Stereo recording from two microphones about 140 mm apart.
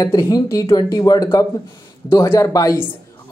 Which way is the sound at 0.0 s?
25° left (ahead or behind).